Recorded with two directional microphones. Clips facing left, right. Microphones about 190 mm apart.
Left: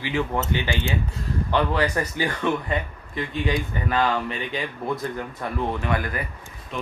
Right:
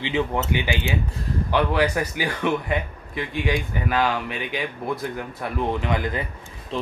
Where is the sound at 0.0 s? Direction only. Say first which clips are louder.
Right 1 dB; 15° right (ahead or behind).